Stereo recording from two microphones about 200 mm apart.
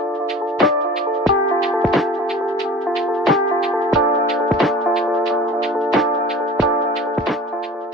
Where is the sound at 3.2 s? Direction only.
Centre (ahead or behind).